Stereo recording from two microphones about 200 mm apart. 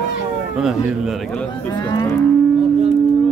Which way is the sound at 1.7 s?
15° left (ahead or behind).